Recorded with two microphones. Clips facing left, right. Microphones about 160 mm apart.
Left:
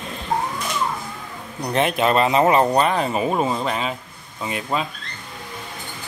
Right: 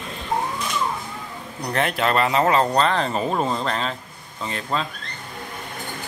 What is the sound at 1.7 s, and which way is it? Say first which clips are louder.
Speech: left 3 dB; 20° left (ahead or behind).